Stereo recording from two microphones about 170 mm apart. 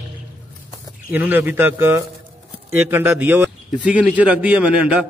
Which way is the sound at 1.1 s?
10° right (ahead or behind).